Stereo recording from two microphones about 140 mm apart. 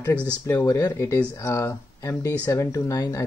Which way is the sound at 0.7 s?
25° left (ahead or behind).